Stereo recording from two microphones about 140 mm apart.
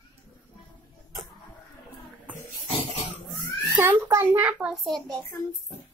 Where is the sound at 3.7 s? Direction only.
15° right (ahead or behind); by 5.0 s centre (ahead or behind).